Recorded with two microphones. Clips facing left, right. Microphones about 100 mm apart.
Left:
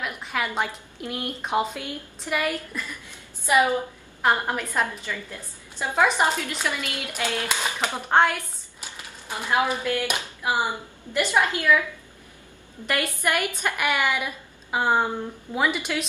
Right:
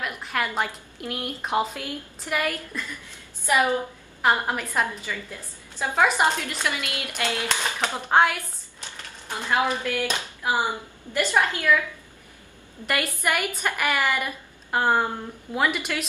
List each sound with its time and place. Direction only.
0.0 s a woman's voice: centre (ahead or behind)
2.9 s a sound: 15° left (ahead or behind)
4.2 s a woman's voice: 5° right (ahead or behind)
8.1 s a woman's voice: 5° right (ahead or behind)
8.8 s a woman's voice: 10° left (ahead or behind)
12.8 s a woman's voice: centre (ahead or behind)